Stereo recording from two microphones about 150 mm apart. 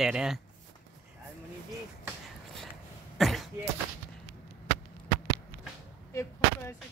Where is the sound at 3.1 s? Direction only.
Centre (ahead or behind).